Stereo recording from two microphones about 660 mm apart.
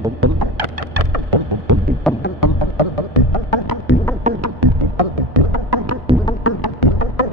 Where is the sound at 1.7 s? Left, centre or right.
Right.